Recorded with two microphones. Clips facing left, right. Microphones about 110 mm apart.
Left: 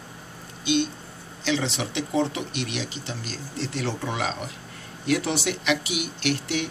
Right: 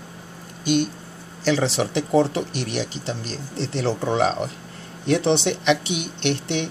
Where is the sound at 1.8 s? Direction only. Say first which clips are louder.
Right 6 dB; 40° right (ahead or behind).